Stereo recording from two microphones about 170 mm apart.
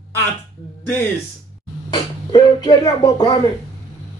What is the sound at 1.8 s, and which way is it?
Speech, 20° left (ahead or behind).